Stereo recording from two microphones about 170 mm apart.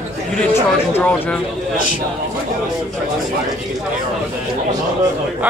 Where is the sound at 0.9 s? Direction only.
10° left (ahead or behind).